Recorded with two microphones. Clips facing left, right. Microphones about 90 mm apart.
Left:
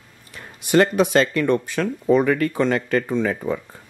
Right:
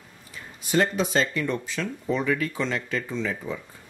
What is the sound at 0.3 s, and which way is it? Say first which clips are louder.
Speech: left 7 dB; 65° left (ahead or behind).